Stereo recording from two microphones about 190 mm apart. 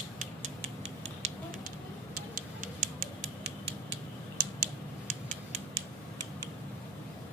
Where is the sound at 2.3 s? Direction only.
40° right (ahead or behind).